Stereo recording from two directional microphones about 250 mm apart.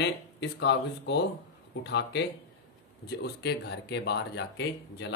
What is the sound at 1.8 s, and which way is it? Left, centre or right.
Speech, left.